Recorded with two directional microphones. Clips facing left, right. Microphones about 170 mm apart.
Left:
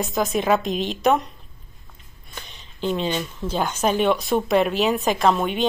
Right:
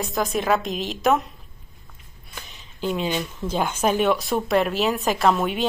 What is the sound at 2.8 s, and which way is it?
A woman's voice, 10° right (ahead or behind).